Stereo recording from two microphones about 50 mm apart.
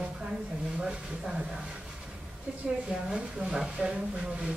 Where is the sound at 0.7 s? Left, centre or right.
Centre.